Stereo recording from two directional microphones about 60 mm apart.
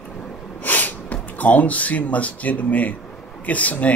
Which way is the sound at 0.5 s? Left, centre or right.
Left.